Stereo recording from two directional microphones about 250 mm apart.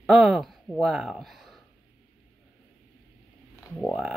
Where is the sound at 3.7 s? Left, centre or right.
Centre.